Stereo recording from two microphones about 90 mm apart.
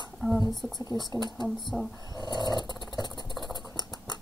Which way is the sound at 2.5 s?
55° left (ahead or behind).